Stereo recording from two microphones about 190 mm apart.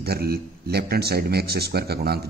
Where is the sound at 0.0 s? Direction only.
55° right (ahead or behind).